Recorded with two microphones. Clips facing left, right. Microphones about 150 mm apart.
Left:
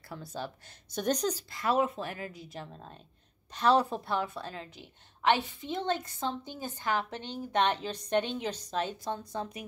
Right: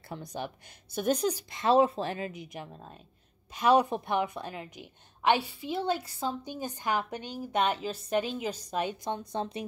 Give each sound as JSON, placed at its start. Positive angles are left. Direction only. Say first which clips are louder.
{"t": 0.1, "sound": "a woman's voice", "louder": "right 2 dB", "side_deg": -15}
{"t": 1.5, "sound": "a woman's voice", "louder": "right 6 dB", "side_deg": -25}